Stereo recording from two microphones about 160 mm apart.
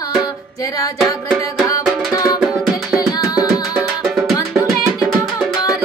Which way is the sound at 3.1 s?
25° left (ahead or behind).